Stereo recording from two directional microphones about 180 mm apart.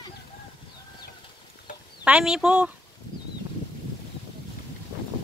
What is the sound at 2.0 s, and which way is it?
Speech, 5° right (ahead or behind).